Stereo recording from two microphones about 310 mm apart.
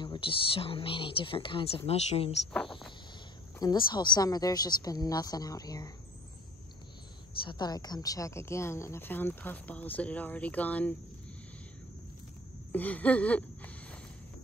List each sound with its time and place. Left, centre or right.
0.0 s speech: centre
3.5 s speech: centre
7.4 s speech: centre
12.7 s speech: centre